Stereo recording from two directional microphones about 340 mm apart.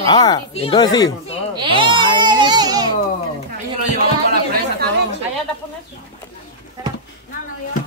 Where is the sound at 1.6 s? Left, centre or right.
Centre.